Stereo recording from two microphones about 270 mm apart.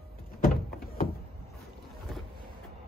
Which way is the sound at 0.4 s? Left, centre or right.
Left.